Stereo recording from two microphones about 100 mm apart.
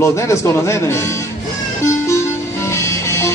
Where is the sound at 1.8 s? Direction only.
30° left (ahead or behind).